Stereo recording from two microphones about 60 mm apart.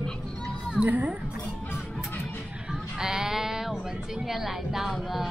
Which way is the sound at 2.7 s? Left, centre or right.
Centre.